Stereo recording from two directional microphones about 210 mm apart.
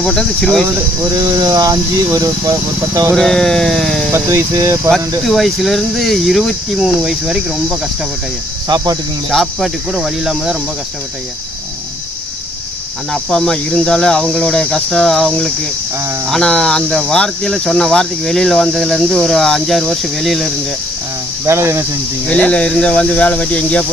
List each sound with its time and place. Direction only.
0.0 s speech: 5° left (ahead or behind)
1.4 s speech: 15° right (ahead or behind)
3.2 s speech: centre (ahead or behind)
4.1 s speech: 15° right (ahead or behind)
5.2 s speech: centre (ahead or behind)
8.6 s speech: 20° right (ahead or behind)
9.3 s speech: centre (ahead or behind)
13.1 s speech: centre (ahead or behind)
21.5 s speech: 10° right (ahead or behind)
22.3 s speech: 5° left (ahead or behind)